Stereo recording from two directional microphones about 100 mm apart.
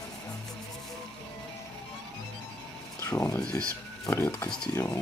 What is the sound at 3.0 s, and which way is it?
Speech, 35° left (ahead or behind).